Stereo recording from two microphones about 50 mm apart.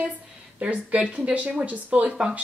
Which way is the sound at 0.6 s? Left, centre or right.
Right.